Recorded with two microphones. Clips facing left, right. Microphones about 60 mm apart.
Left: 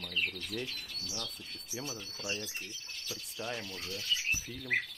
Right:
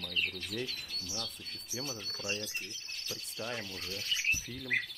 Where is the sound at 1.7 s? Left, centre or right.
Centre.